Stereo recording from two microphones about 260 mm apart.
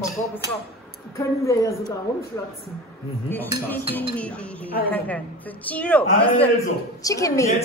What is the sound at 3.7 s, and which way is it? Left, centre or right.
Cutlery, centre.